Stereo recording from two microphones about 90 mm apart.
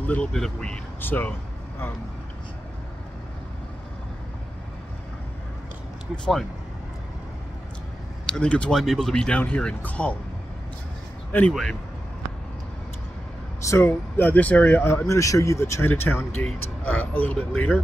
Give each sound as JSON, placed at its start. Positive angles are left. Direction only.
{"t": 0.0, "sound": "speech", "side_deg": 15}
{"t": 1.0, "sound": "speech", "side_deg": 20}
{"t": 8.3, "sound": "speech", "side_deg": 10}
{"t": 11.3, "sound": "speech", "side_deg": 25}
{"t": 13.7, "sound": "speech", "side_deg": 25}